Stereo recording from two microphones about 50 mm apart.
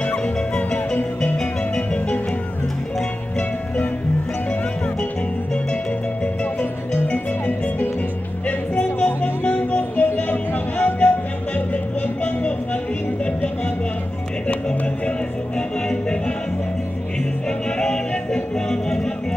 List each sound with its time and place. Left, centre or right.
0.0 s music: left
6.2 s music: left
9.0 s music: left
14.5 s music: centre
17.5 s music: centre